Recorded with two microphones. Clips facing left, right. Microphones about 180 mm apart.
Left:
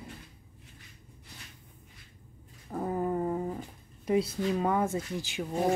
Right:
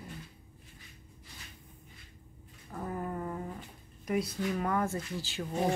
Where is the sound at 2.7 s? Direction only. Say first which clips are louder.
Left 7 dB; 25° left (ahead or behind).